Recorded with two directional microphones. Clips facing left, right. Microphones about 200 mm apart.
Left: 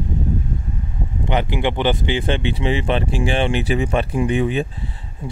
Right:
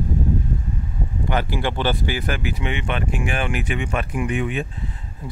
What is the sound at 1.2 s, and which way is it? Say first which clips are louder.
Speech: left 3 dB; 20° left (ahead or behind).